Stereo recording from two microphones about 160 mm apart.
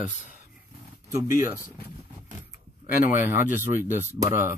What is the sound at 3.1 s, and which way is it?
Speech, 15° right (ahead or behind).